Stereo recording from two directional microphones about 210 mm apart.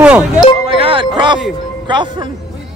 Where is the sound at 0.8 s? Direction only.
25° right (ahead or behind).